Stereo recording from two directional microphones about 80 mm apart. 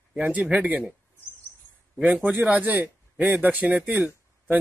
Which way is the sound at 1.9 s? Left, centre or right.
Centre.